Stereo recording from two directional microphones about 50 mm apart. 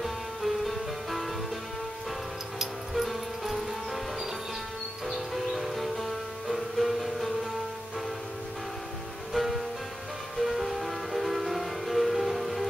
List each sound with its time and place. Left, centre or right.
0.0 s music: centre
2.6 s music: centre
9.3 s music: centre